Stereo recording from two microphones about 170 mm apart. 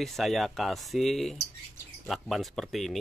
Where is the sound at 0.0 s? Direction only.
Centre (ahead or behind).